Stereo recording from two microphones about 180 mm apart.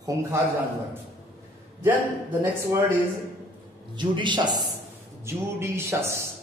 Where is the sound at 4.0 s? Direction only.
25° right (ahead or behind).